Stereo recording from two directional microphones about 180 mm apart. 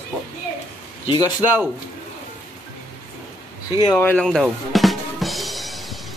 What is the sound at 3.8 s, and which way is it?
Drum, 10° left (ahead or behind).